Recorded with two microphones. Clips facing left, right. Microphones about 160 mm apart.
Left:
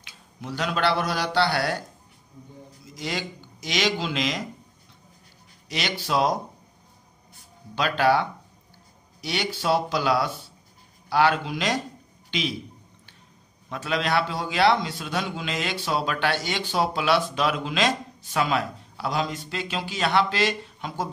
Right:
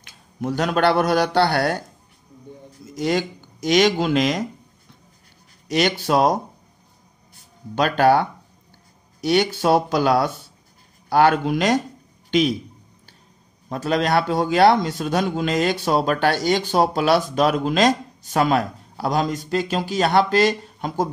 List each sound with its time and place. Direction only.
0.0 s a man's voice: 50° right (ahead or behind)
3.0 s a man's voice: 50° right (ahead or behind)
5.7 s a man's voice: 50° right (ahead or behind)
7.7 s a man's voice: 45° right (ahead or behind)
13.7 s a man's voice: 40° right (ahead or behind)